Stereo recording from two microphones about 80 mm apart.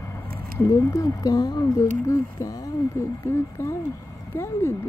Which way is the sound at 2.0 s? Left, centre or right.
Left.